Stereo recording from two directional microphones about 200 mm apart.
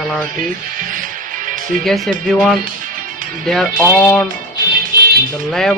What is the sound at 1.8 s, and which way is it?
Speech, centre (ahead or behind).